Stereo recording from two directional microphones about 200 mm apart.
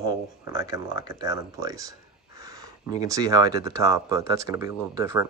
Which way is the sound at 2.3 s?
15° right (ahead or behind).